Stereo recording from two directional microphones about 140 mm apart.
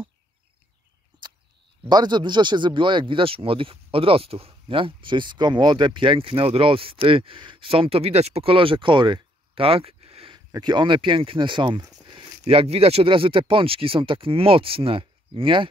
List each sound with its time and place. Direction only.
1.1 s a sound: 30° right (ahead or behind)
1.9 s speech: 30° right (ahead or behind)
10.3 s speech: 30° right (ahead or behind)